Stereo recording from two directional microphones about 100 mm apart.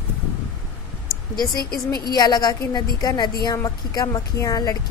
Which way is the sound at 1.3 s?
40° left (ahead or behind).